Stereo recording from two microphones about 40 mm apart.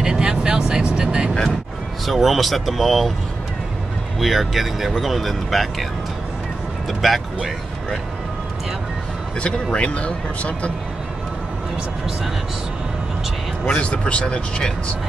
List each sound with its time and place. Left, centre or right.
0.0 s vehicle: centre
2.0 s speech: centre
4.2 s speech: centre
6.9 s speech: centre
9.7 s speech: left
13.7 s speech: left